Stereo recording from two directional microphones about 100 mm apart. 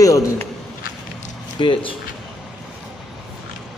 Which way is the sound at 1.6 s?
60° left (ahead or behind).